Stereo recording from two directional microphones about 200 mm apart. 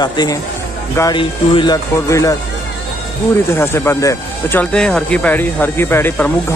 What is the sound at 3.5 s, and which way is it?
Speech, 10° left (ahead or behind).